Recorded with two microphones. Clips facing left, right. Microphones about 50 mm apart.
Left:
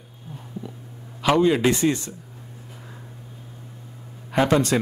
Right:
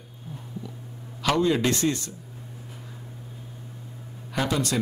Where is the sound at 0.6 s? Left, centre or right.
Left.